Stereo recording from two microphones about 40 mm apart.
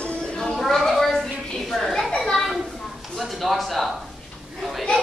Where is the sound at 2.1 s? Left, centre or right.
Centre.